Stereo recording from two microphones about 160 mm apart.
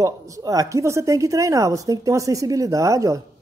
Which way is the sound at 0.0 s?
20° right (ahead or behind).